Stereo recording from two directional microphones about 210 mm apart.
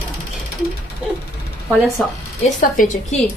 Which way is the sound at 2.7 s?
35° left (ahead or behind).